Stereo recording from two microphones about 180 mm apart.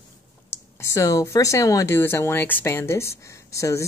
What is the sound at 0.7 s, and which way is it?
Speech, 15° left (ahead or behind).